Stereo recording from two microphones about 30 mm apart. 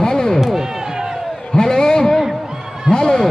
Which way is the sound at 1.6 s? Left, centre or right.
Left.